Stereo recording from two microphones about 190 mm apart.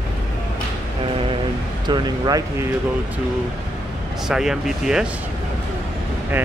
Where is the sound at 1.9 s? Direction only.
20° right (ahead or behind).